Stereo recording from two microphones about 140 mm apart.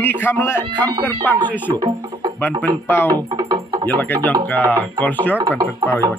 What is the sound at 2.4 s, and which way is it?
Speech, 15° left (ahead or behind).